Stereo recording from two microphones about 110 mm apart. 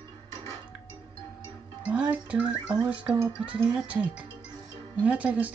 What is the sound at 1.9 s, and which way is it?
Speech, 10° right (ahead or behind).